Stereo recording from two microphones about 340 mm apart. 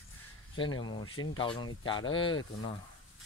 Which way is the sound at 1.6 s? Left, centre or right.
Centre.